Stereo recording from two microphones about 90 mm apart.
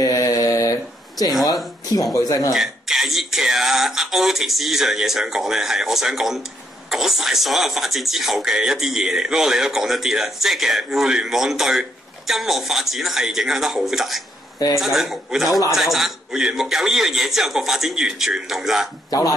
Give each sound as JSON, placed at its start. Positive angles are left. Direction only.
{"t": 0.0, "sound": "mantra", "side_deg": 40}
{"t": 2.2, "sound": "speech", "side_deg": 40}
{"t": 2.5, "sound": "speech", "side_deg": -5}
{"t": 19.0, "sound": "speech", "side_deg": 40}